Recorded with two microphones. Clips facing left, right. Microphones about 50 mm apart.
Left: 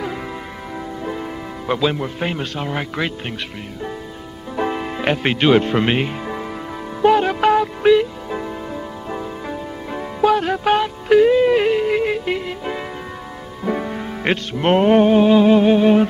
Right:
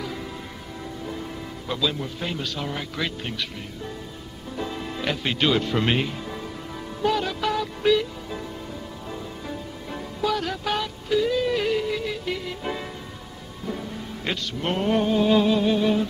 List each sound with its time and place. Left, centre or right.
1.0 s a man's voice: left
4.6 s music: left
5.9 s speech: left
7.0 s music: left
13.7 s music: left
14.3 s music: left